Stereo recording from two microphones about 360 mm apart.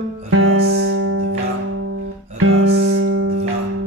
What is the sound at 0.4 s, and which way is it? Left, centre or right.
Music, right.